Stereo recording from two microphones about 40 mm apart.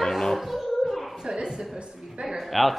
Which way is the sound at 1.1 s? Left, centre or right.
Centre.